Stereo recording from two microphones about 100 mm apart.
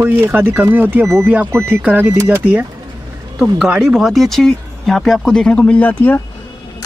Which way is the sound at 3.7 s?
5° right (ahead or behind).